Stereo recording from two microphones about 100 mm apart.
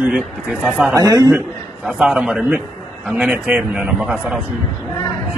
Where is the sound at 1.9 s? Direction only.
5° right (ahead or behind).